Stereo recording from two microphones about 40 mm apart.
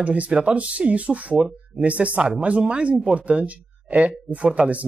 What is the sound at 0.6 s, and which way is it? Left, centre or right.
Speech, right.